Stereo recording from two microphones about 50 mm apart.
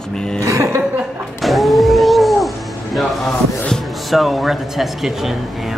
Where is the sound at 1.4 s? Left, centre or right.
Centre.